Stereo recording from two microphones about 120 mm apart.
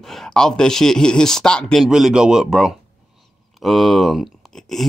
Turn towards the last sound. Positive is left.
turn(degrees=5)  # may be behind; listen again after turning